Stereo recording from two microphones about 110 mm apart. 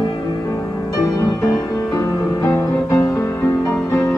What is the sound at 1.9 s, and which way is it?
Music, 30° left (ahead or behind).